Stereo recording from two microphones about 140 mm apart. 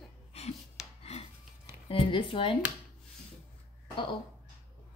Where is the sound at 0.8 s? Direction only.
5° right (ahead or behind).